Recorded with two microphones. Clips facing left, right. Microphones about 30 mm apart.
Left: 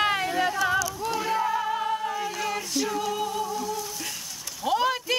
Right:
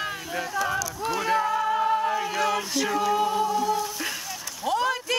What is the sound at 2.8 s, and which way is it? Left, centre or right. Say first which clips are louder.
A capella: right 4 dB; centre.